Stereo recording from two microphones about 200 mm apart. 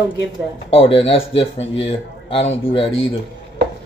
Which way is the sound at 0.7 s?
30° left (ahead or behind).